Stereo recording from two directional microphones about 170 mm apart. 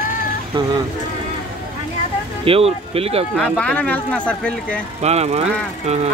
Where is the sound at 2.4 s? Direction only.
35° right (ahead or behind).